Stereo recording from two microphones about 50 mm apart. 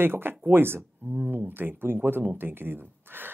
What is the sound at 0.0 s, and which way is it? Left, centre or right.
Speech, right.